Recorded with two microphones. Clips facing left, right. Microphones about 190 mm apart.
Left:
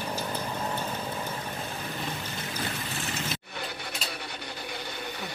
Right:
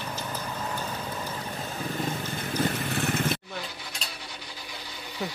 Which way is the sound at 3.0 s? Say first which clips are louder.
Right 9 dB; 55° right (ahead or behind).